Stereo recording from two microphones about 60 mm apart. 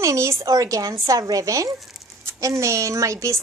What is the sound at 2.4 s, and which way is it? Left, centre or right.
A woman's voice, right.